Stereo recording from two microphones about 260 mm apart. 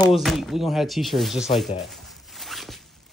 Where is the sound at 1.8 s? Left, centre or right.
Centre.